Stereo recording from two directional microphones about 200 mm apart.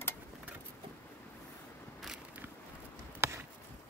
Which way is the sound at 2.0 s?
Centre (ahead or behind).